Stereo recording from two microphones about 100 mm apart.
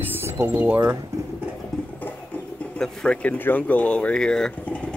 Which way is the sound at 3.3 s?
20° left (ahead or behind).